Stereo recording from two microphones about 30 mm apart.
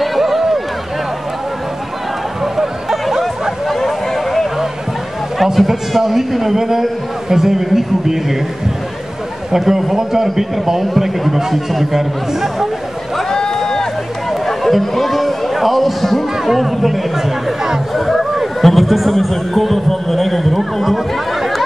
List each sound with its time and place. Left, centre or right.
0.0 s a sound: centre
2.4 s hubbub: centre
4.1 s a sound: centre
5.4 s a man's voice: centre
9.5 s a man's voice: centre
13.3 s run: centre
14.4 s a man's voice: centre
17.9 s a sound: centre
18.6 s speech: centre